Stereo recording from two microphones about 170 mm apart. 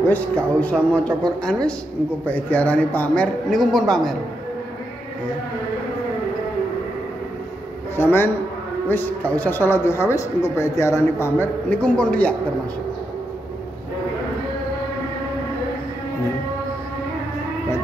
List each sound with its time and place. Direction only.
0.1 s speech: 10° left (ahead or behind)
7.9 s speech: 15° left (ahead or behind)